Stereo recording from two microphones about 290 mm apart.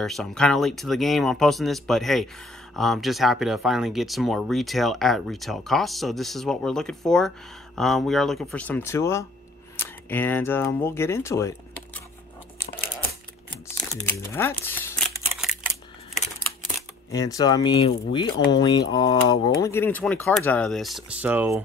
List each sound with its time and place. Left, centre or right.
0.0 s speech: centre
13.5 s crumpling: centre
17.1 s speech: centre